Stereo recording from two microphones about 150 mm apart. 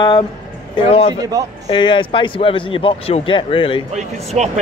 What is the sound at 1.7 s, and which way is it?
Speech, 35° left (ahead or behind).